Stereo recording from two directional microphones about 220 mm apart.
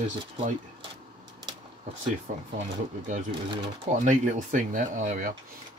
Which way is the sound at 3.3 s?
20° right (ahead or behind).